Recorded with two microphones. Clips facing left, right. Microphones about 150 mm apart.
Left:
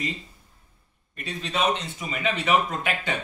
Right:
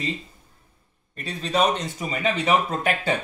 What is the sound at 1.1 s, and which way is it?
Speech, 35° right (ahead or behind).